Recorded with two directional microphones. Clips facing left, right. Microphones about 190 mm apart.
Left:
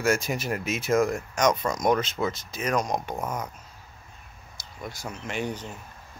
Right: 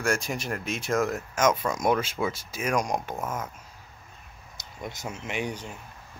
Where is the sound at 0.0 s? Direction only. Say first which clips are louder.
Left 3 dB; centre (ahead or behind).